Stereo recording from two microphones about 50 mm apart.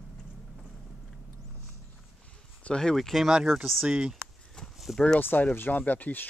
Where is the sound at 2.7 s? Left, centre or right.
Centre.